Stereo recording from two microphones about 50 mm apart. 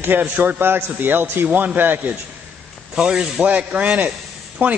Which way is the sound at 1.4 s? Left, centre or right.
Right.